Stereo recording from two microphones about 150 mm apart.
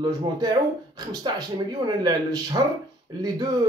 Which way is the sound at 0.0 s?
30° right (ahead or behind).